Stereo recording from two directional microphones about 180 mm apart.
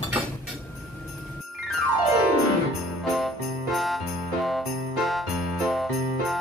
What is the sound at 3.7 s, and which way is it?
Music, centre (ahead or behind).